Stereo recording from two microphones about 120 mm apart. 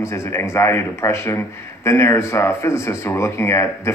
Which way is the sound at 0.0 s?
25° left (ahead or behind).